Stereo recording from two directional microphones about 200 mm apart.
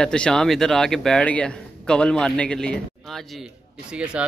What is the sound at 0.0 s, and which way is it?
A man's voice, 5° left (ahead or behind).